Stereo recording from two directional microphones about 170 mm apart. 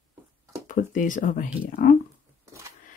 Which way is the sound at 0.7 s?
50° left (ahead or behind).